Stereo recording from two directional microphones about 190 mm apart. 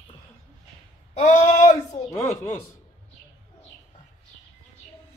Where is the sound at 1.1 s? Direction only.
35° left (ahead or behind).